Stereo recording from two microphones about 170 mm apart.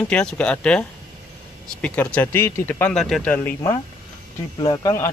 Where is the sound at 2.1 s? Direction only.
10° left (ahead or behind).